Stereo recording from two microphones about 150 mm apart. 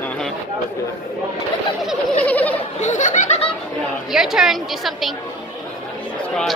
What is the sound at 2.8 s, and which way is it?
Speech, 55° left (ahead or behind).